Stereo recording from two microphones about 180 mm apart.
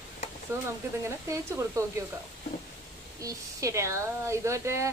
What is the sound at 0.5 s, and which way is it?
Speech, 15° right (ahead or behind).